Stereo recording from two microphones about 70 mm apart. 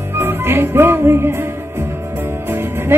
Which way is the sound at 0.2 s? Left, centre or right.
Right.